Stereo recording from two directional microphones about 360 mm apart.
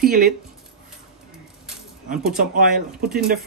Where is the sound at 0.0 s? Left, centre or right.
Right.